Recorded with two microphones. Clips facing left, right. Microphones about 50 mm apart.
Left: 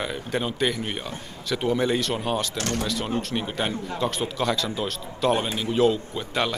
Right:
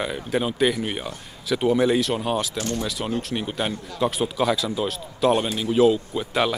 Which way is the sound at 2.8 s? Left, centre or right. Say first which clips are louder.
Even; centre.